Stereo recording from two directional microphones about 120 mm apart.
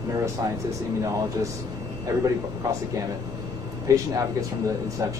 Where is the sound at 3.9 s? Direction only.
30° right (ahead or behind).